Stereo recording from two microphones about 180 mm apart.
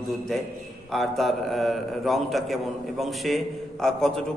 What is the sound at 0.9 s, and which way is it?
A man's voice, centre (ahead or behind).